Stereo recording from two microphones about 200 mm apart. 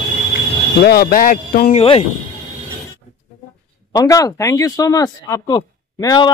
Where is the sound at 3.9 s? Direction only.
15° left (ahead or behind).